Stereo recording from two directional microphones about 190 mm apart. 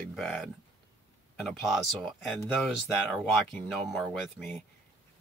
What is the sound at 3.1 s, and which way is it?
Speech, 5° left (ahead or behind).